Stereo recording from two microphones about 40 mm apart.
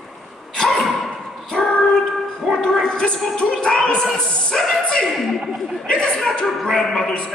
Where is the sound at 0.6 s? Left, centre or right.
Centre.